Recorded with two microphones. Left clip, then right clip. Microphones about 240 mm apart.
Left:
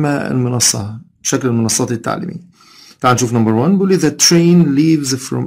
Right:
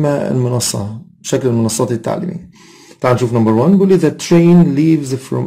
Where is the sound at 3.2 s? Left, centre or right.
Left.